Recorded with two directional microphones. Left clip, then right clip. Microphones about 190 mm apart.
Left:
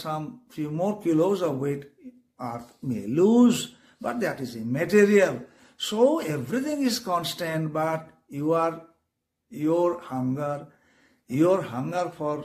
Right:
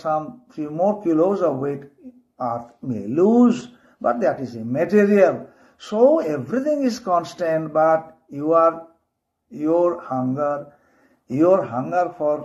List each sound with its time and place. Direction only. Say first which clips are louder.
0.0 s speech: right 9 dB; 25° left (ahead or behind)